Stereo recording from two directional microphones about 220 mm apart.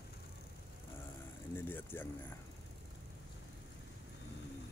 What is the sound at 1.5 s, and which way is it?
Speech, 10° left (ahead or behind).